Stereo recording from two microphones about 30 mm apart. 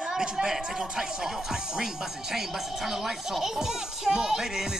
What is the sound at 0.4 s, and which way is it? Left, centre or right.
A child's voice, centre.